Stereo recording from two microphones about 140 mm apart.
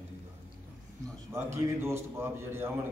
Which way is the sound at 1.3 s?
20° right (ahead or behind).